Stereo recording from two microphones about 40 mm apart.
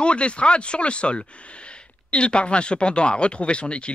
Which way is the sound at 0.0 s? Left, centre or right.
Left.